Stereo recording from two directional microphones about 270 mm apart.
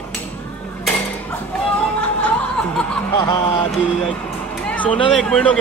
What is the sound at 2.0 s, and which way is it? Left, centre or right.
Music, centre.